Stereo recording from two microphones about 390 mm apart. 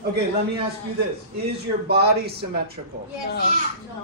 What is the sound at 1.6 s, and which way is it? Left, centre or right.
Speech, right.